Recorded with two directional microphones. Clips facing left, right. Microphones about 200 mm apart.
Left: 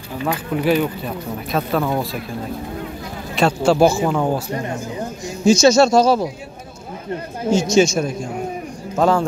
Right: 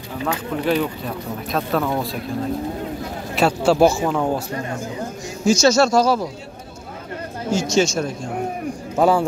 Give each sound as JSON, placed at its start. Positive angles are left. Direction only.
{"t": 0.3, "sound": "speech", "side_deg": 5}
{"t": 3.3, "sound": "speech", "side_deg": -5}
{"t": 5.4, "sound": "speech", "side_deg": 20}
{"t": 7.5, "sound": "speech", "side_deg": 15}
{"t": 8.9, "sound": "speech", "side_deg": -10}